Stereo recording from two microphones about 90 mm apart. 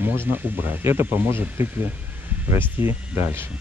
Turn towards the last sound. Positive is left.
turn(degrees=-25)  # may be behind; listen again after turning